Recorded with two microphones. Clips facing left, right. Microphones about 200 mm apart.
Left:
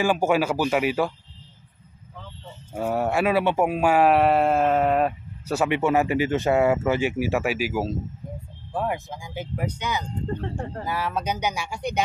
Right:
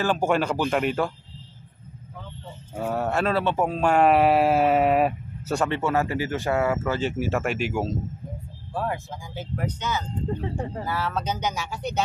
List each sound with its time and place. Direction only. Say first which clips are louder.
0.0 s speech: left 2 dB; 10° left (ahead or behind)
2.9 s speech: left 2 dB; 10° left (ahead or behind); by 5.6 s 5° right (ahead or behind)
5.6 s speech: left 3 dB; 15° left (ahead or behind)
8.7 s speech: left 2 dB; 15° left (ahead or behind)
10.2 s speech: right 1 dB; 5° right (ahead or behind)
10.9 s speech: left 2 dB; 15° left (ahead or behind)